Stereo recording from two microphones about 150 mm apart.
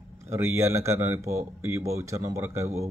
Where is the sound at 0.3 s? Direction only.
15° right (ahead or behind).